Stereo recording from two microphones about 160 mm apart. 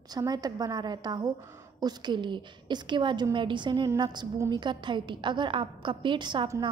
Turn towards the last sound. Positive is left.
turn(degrees=-25)  # may be behind; listen again after turning